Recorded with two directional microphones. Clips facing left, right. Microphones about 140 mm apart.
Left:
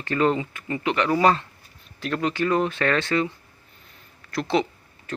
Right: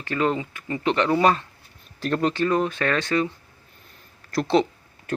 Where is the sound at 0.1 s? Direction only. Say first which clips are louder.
Left 2 dB; 5° left (ahead or behind).